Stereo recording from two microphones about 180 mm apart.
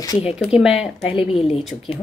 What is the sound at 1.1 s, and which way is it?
Speech, 30° left (ahead or behind).